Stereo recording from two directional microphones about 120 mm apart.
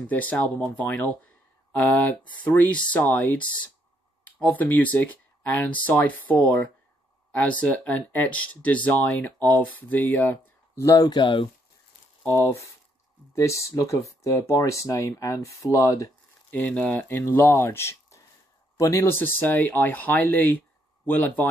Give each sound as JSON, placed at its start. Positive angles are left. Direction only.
{"t": 0.0, "sound": "speech", "side_deg": 15}
{"t": 12.3, "sound": "speech", "side_deg": 20}
{"t": 16.4, "sound": "speech", "side_deg": 15}